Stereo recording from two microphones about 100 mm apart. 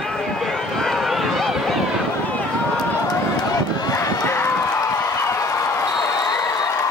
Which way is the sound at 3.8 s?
35° left (ahead or behind).